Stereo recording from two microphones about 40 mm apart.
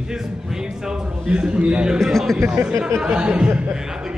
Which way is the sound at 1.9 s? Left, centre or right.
Centre.